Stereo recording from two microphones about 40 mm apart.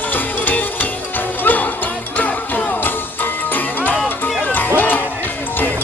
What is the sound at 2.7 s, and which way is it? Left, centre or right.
Music, left.